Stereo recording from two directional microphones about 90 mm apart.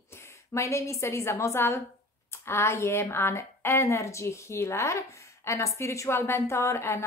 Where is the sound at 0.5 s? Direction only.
35° left (ahead or behind).